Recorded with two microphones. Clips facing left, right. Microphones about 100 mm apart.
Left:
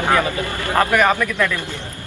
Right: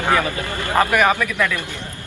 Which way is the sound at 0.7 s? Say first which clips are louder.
Even; 10° right (ahead or behind).